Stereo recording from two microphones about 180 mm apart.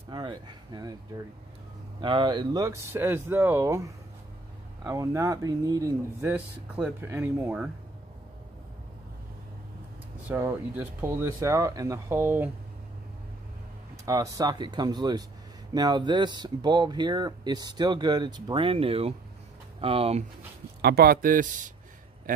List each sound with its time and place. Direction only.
0.1 s speech: 25° right (ahead or behind)
6.3 s speech: 5° right (ahead or behind)
10.2 s speech: 10° right (ahead or behind)
14.0 s speech: 20° right (ahead or behind); by 20.2 s 35° right (ahead or behind)
20.8 s a man's voice: 60° right (ahead or behind)